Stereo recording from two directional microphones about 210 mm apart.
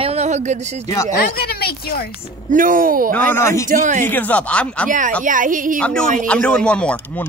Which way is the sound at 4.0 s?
10° left (ahead or behind).